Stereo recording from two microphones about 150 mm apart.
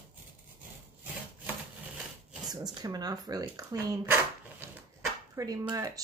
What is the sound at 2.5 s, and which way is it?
Speech, 25° right (ahead or behind).